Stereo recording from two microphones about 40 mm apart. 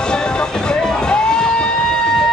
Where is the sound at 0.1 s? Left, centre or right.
Centre.